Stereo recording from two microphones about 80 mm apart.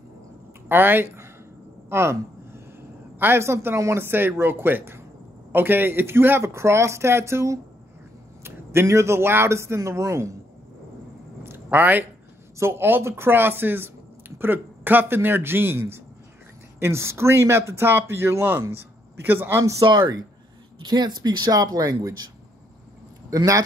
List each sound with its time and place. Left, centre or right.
0.7 s speech: right
1.9 s a sound: right
3.2 s speech: right
11.4 s a sound: right
12.5 s speech: right
19.6 s speech: right
19.9 s speech: right
20.8 s speech: right
23.3 s speech: right